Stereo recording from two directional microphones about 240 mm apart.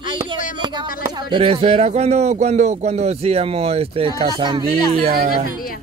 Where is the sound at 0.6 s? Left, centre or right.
Centre.